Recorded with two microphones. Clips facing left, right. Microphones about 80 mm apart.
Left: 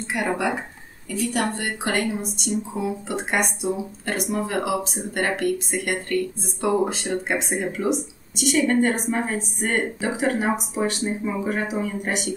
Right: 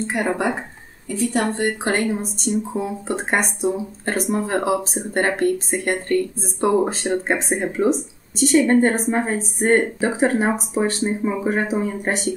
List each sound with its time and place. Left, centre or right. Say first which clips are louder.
1.1 s a woman's voice: right 3 dB; right